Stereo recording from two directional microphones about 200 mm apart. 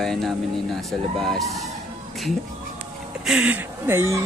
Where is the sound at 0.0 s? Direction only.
Centre (ahead or behind).